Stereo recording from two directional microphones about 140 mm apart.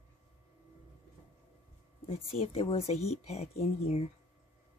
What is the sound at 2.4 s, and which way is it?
Speech, 45° left (ahead or behind).